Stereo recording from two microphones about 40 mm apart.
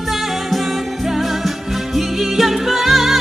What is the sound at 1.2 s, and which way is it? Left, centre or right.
Music, centre.